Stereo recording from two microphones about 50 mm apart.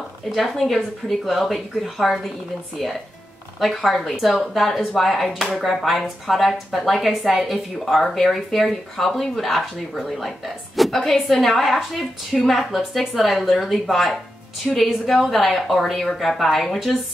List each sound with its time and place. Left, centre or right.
0.3 s speech: centre